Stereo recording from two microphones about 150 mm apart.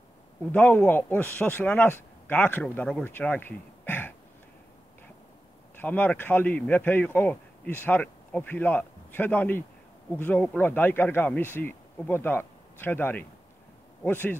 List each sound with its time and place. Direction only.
0.5 s speech: 10° left (ahead or behind)
5.8 s speech: 10° left (ahead or behind)